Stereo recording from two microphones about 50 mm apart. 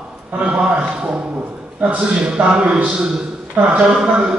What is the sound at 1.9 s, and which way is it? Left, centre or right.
Speech, centre.